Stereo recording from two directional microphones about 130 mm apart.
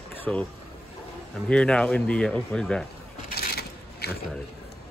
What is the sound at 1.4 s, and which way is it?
Speech, 10° left (ahead or behind).